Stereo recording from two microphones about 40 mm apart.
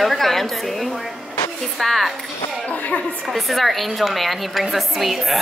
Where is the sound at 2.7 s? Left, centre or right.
Left.